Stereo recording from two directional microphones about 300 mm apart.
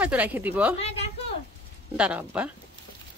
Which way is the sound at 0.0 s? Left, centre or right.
Centre.